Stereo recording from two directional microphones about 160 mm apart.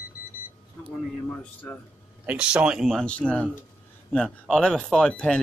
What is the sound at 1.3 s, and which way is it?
Speech, 10° left (ahead or behind).